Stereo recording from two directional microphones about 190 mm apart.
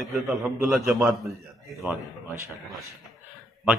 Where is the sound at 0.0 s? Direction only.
Centre (ahead or behind).